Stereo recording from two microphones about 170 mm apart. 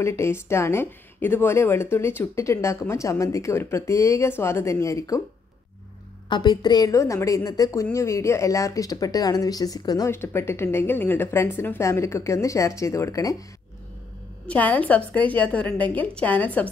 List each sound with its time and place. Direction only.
0.0 s a woman's voice: 15° left (ahead or behind)
6.2 s a woman's voice: 25° left (ahead or behind)
14.5 s a woman's voice: 10° left (ahead or behind)